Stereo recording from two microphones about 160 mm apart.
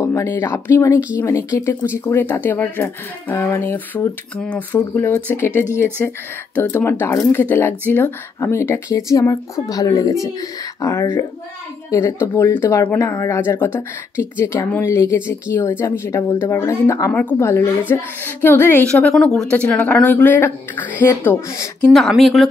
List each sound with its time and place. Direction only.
0.0 s speech: 20° left (ahead or behind); by 22.5 s centre (ahead or behind)